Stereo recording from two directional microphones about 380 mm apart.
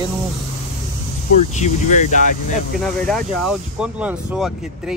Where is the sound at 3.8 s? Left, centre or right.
Centre.